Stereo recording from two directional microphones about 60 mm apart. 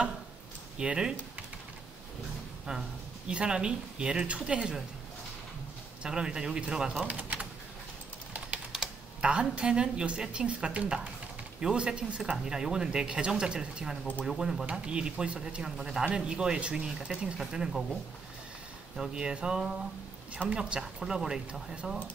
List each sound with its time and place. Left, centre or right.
0.7 s speech: centre
2.7 s speech: centre
6.0 s speech: centre
7.0 s speech: right
8.7 s speech: centre
18.9 s speech: centre
20.8 s speech: centre